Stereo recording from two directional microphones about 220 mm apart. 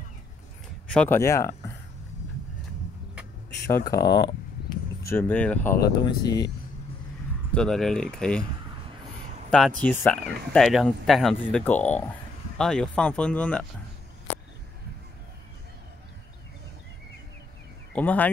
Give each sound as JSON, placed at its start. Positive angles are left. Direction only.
{"t": 0.8, "sound": "speech", "side_deg": 5}
{"t": 3.6, "sound": "speech", "side_deg": 15}
{"t": 5.1, "sound": "speech", "side_deg": 5}
{"t": 6.0, "sound": "speech", "side_deg": 20}
{"t": 7.5, "sound": "speech", "side_deg": 0}
{"t": 9.5, "sound": "speech", "side_deg": 5}
{"t": 17.9, "sound": "speech", "side_deg": 5}